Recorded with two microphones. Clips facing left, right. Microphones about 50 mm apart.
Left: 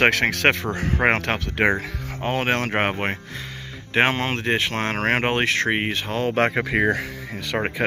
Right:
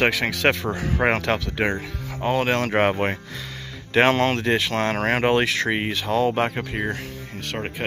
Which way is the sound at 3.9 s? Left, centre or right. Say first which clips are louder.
Right 3 dB; centre.